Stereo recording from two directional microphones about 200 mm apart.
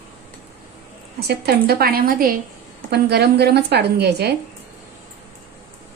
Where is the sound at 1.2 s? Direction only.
50° right (ahead or behind).